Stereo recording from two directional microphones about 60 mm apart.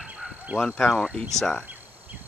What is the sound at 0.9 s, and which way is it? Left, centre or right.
Speech, centre.